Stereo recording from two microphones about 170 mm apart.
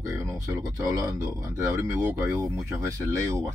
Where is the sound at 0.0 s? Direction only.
15° right (ahead or behind).